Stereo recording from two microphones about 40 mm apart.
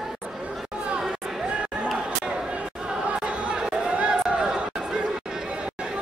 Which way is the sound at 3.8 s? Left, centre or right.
Right.